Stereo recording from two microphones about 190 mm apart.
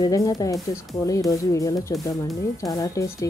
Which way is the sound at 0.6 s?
15° left (ahead or behind).